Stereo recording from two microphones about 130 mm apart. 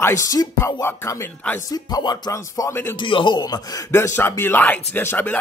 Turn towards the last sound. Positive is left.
turn(degrees=15)  # may be behind; listen again after turning